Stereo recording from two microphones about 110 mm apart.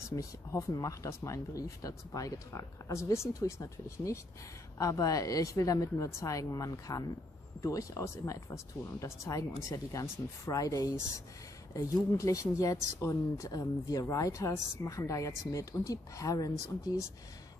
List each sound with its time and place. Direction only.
0.1 s speech: 30° left (ahead or behind)